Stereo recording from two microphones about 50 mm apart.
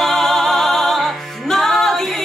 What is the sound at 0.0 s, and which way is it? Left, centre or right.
Music, centre.